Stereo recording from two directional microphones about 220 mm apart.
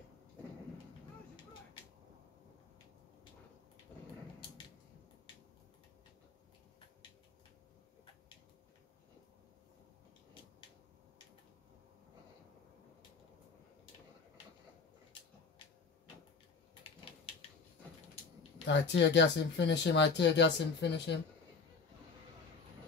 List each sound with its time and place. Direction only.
18.7 s speech: 55° left (ahead or behind)